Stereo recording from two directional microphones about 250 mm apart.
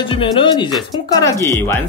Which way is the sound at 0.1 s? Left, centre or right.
Centre.